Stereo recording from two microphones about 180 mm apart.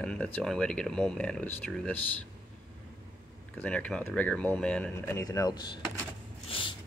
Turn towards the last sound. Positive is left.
turn(degrees=30)  # may be behind; listen again after turning